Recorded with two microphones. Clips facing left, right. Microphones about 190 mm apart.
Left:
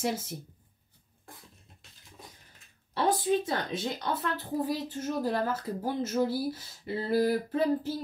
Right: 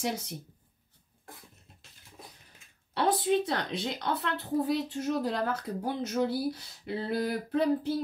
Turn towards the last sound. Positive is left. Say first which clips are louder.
# right 1 dB
turn(degrees=5)  # may be behind; listen again after turning